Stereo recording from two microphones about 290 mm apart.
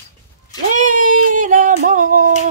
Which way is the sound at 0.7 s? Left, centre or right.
Right.